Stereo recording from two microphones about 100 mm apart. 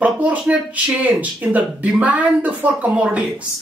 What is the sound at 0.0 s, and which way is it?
Speech, 15° right (ahead or behind).